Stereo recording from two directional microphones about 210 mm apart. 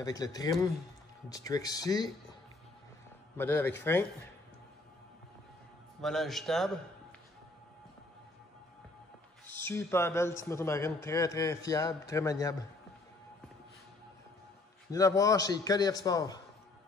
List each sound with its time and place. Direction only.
0.0 s a man's voice: 15° left (ahead or behind)
3.3 s a man's voice: 10° left (ahead or behind)
5.9 s a man's voice: centre (ahead or behind)
9.5 s a man's voice: 10° left (ahead or behind)
14.9 s a man's voice: 15° left (ahead or behind)